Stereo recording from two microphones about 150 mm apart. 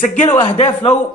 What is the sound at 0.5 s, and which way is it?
Speech, 45° left (ahead or behind).